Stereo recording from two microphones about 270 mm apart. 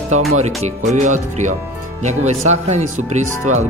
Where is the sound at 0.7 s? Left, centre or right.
Right.